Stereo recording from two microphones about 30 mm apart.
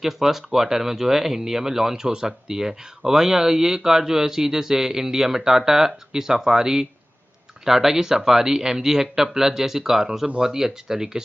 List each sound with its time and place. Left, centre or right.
0.0 s speech: centre